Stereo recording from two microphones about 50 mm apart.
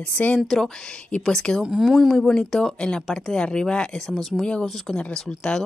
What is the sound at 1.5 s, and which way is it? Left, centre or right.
Speech, left.